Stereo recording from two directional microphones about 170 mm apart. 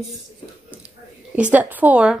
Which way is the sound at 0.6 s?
5° right (ahead or behind).